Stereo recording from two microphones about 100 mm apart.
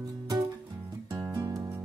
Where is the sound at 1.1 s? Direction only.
50° right (ahead or behind).